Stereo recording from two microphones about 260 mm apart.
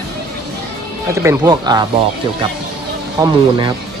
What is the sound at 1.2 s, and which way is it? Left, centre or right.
Speech, centre.